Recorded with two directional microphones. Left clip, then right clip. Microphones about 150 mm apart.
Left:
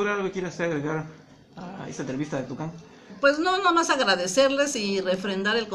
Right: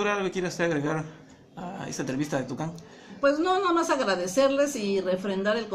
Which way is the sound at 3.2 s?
5° left (ahead or behind).